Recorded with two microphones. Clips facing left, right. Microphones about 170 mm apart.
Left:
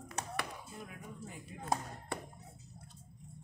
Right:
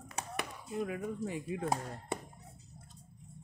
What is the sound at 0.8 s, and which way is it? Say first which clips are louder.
Speech: right 12 dB; 90° right.